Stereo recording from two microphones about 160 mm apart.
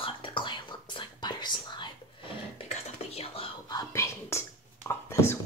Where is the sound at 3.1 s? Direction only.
40° left (ahead or behind).